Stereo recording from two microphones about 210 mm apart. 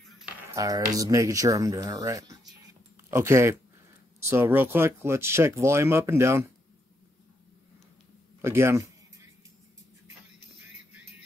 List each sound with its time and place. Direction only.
0.6 s speech: 15° right (ahead or behind)
8.4 s a man's voice: 10° right (ahead or behind)